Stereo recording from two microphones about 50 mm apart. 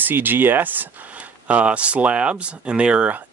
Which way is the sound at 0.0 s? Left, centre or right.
Right.